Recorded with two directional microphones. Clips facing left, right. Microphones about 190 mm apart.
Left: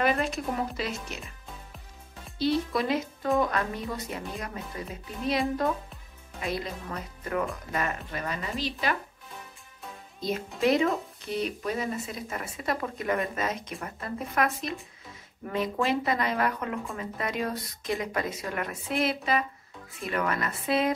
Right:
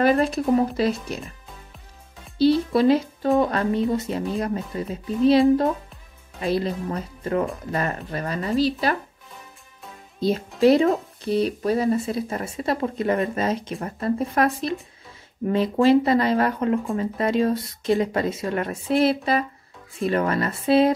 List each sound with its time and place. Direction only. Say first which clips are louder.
0.0 s speech: right 8 dB; 35° right (ahead or behind)
2.3 s speech: right 8 dB; 30° right (ahead or behind)
6.4 s speech: right 9 dB; 30° right (ahead or behind)
10.6 s speech: right 8 dB; 35° right (ahead or behind)